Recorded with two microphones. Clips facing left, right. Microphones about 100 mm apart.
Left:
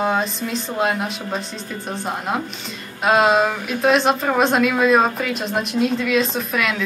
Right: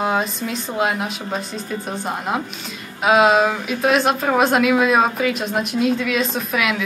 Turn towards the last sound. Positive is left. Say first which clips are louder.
# right 1 dB
turn(degrees=0)  # may be behind; listen again after turning